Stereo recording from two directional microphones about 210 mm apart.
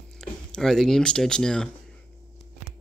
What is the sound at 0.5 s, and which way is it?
Speech, centre (ahead or behind).